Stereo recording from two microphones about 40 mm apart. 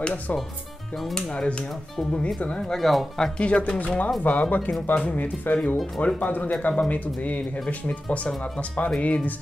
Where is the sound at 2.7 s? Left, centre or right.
Centre.